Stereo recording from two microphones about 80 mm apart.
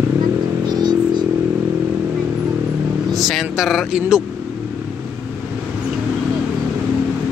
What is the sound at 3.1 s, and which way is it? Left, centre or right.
Speech, centre.